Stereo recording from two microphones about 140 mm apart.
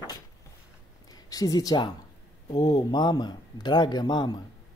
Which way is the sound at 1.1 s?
25° left (ahead or behind).